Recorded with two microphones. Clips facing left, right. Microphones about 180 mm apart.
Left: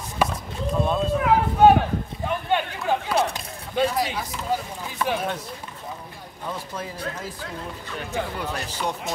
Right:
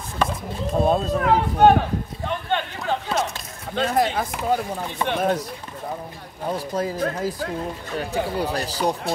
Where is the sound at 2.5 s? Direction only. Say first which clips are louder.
Left 2 dB; 10° left (ahead or behind).